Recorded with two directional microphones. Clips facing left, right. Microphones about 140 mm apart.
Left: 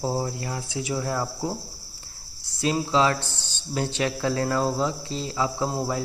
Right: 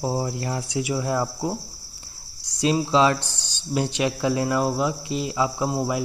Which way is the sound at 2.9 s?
20° right (ahead or behind).